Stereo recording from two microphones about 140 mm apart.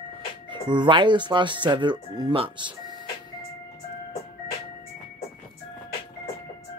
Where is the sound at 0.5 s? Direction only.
35° right (ahead or behind).